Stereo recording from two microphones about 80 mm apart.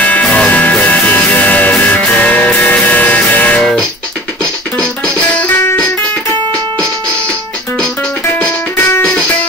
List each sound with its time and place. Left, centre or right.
0.0 s music: centre
4.7 s music: centre